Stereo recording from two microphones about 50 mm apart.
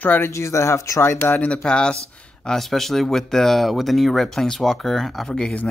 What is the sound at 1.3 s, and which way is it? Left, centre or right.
Speech, left.